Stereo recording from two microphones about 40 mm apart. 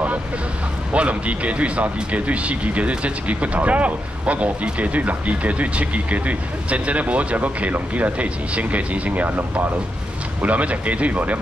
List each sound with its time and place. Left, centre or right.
0.9 s speech: right
10.4 s speech: right